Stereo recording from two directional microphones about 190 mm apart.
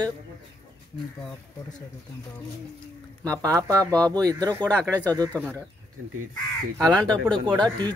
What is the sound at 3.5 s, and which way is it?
Speech, 20° right (ahead or behind).